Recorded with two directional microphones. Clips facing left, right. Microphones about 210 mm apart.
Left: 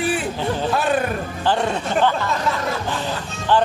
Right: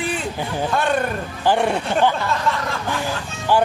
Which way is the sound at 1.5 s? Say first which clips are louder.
Right 2 dB; 10° right (ahead or behind).